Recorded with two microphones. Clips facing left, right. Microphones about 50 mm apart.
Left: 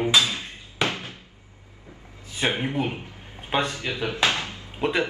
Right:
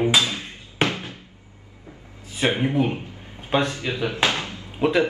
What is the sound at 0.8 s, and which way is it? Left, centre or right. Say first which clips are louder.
Cupboard open or close: right 3 dB; right.